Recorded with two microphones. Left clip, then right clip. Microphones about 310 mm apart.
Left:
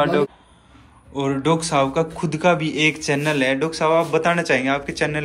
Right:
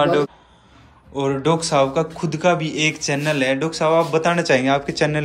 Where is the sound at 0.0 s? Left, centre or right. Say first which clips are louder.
Right 1 dB; centre.